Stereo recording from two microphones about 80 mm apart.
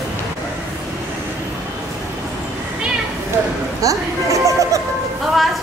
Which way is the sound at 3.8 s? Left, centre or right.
Right.